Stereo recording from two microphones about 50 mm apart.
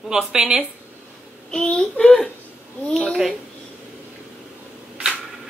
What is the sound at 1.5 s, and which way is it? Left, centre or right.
Speech, centre.